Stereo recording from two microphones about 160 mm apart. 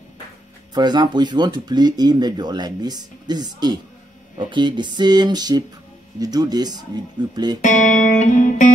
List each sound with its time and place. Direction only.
0.7 s speech: 25° right (ahead or behind)
7.6 s music: 50° left (ahead or behind)